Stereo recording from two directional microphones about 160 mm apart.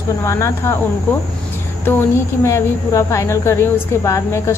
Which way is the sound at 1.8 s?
15° left (ahead or behind).